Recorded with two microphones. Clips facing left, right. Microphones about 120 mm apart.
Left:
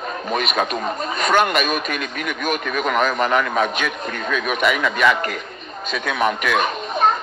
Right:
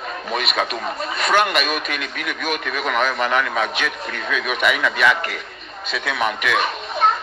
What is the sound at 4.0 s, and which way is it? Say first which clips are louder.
Speech: left 2 dB; 45° left (ahead or behind).